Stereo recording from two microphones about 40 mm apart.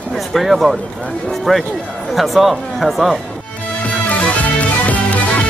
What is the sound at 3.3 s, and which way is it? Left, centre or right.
Music, left.